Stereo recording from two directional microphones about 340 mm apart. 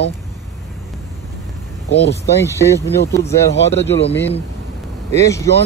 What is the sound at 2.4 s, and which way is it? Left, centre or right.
Speech, centre.